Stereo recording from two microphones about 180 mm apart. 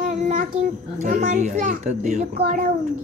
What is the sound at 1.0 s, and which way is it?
A child's voice, 40° right (ahead or behind).